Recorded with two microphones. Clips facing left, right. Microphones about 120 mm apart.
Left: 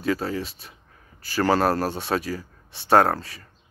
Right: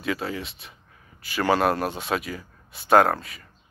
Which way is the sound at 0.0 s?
40° left (ahead or behind).